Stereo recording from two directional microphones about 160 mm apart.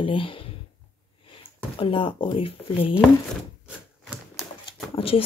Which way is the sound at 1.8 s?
35° left (ahead or behind).